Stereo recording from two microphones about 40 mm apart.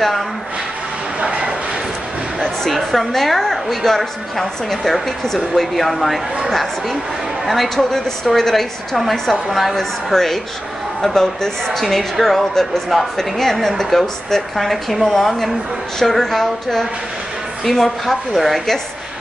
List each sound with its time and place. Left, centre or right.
1.2 s a sound: right
2.7 s a woman's voice: centre
9.5 s a woman's voice: centre